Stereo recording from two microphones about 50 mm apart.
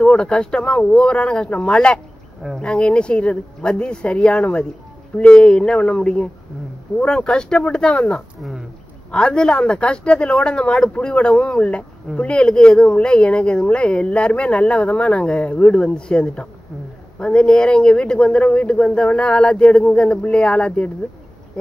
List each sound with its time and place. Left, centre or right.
0.0 s a woman's voice: left
8.4 s a sound: centre
9.1 s a woman's voice: centre